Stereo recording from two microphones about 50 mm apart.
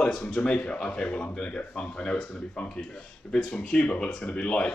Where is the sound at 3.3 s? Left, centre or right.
Centre.